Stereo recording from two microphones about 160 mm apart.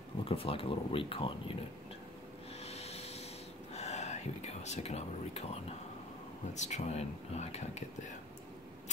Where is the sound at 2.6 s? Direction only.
40° left (ahead or behind).